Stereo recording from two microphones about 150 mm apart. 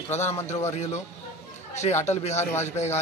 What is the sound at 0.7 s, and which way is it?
Speech, 50° left (ahead or behind).